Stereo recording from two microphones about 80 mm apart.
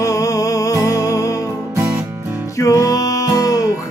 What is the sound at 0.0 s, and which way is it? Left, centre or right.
Music, left.